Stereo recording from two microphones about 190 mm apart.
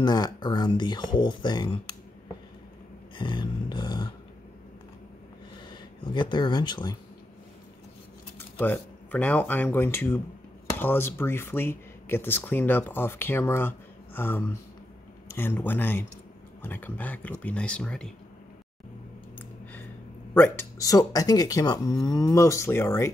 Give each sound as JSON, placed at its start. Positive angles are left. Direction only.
{"t": 0.0, "sound": "speech", "side_deg": 20}
{"t": 3.2, "sound": "a sound", "side_deg": 25}
{"t": 5.7, "sound": "speech", "side_deg": 25}
{"t": 8.4, "sound": "speech", "side_deg": 10}
{"t": 20.3, "sound": "speech", "side_deg": 10}